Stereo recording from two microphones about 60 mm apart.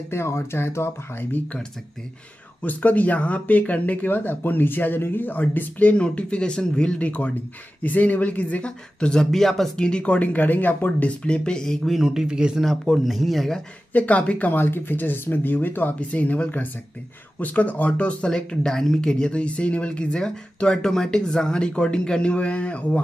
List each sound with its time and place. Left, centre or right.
0.1 s speech: left
2.6 s speech: left; by 12.6 s centre
12.6 s speech: centre
13.9 s speech: left
14.5 s speech: left
18.3 s speech: centre